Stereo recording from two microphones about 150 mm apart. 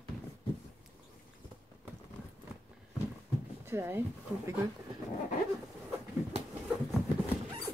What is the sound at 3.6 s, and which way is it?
Speech, 15° right (ahead or behind).